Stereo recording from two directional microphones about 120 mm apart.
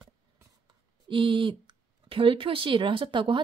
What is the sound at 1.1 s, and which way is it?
Speech, 45° right (ahead or behind).